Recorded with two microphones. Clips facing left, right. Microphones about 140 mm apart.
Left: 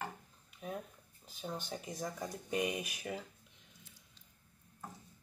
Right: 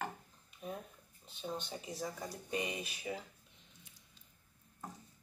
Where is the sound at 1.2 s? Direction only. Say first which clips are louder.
Even; centre (ahead or behind).